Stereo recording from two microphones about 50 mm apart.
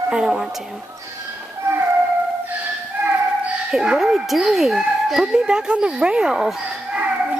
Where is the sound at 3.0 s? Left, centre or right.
Right.